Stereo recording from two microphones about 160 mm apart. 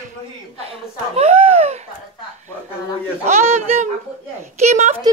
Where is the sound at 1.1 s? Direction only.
40° right (ahead or behind).